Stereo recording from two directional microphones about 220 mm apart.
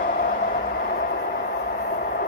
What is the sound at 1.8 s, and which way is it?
Train, 45° left (ahead or behind).